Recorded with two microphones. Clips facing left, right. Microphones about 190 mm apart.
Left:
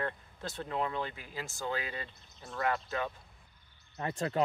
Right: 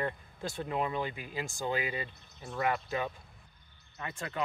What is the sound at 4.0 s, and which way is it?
Speech, 35° left (ahead or behind).